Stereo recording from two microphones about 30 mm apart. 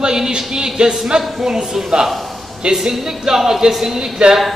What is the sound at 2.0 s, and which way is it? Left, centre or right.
Speech, centre.